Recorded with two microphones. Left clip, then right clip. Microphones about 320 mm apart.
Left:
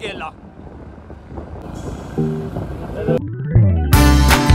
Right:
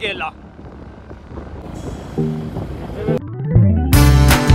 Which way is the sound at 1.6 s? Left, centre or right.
Centre.